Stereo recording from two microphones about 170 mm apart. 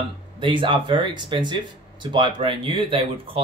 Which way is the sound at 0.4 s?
30° right (ahead or behind).